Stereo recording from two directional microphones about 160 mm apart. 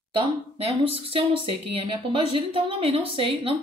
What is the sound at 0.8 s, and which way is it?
A woman's voice, 35° right (ahead or behind).